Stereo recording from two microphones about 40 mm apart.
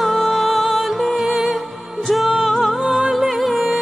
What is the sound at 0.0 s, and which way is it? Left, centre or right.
Music, centre.